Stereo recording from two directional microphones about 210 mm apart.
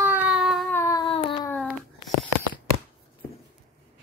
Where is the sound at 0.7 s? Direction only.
15° left (ahead or behind).